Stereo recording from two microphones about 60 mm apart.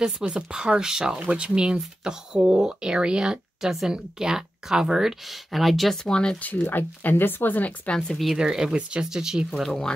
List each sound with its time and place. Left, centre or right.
0.3 s speech: centre
6.0 s speech: centre
6.4 s speech: left
8.4 s speech: centre
9.5 s speech: centre